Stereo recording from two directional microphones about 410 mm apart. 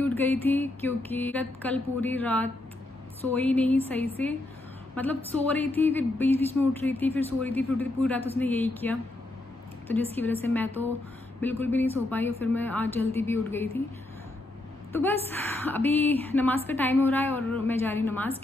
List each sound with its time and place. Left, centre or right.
0.0 s a woman's voice: centre
15.7 s a woman's voice: centre